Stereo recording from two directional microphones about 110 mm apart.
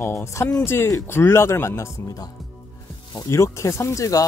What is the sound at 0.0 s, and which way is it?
Speech, 25° left (ahead or behind).